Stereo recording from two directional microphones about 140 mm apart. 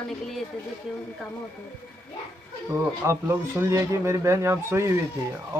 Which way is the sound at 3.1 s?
20° right (ahead or behind).